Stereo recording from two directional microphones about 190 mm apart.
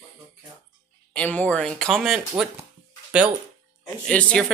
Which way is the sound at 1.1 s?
5° left (ahead or behind).